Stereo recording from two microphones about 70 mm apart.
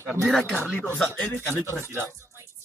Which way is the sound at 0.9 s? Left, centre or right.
Centre.